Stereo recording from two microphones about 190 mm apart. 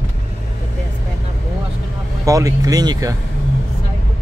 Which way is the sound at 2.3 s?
20° right (ahead or behind).